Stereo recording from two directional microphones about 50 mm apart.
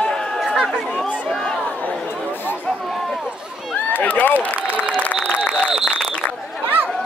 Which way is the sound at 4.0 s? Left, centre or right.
Left.